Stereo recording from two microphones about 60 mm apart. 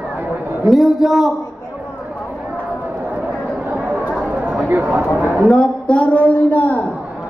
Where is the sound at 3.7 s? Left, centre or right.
Right.